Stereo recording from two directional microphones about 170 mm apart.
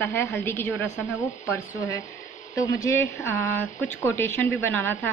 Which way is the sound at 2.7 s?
15° left (ahead or behind).